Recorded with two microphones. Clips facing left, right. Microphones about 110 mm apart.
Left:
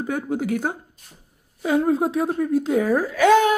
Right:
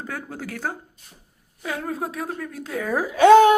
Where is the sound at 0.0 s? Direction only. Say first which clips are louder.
Left 8 dB; 20° left (ahead or behind).